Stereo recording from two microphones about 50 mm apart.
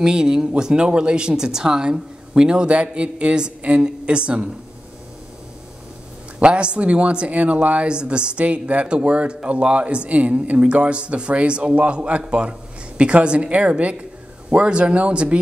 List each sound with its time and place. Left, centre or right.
0.0 s speech: centre
6.4 s speech: right